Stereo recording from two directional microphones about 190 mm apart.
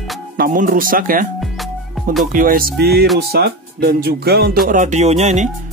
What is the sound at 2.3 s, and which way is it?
Speech, 50° right (ahead or behind).